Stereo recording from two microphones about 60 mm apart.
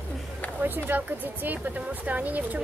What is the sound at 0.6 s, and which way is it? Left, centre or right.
Speech, right.